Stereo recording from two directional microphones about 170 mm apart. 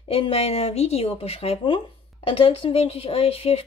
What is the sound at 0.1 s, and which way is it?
Speech, 35° left (ahead or behind).